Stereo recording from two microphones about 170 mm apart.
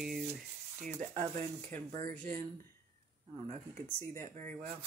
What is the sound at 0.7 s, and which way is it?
Speech, 45° right (ahead or behind).